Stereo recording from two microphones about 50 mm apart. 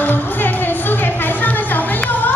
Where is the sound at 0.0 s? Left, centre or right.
Left.